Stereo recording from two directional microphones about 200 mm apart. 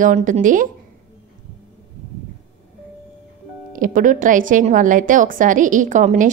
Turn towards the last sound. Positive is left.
turn(degrees=-40)  # may be behind; listen again after turning